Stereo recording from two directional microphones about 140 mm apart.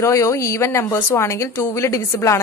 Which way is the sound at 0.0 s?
20° left (ahead or behind).